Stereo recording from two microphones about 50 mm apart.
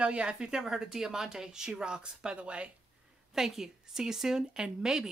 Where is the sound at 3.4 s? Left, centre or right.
Centre.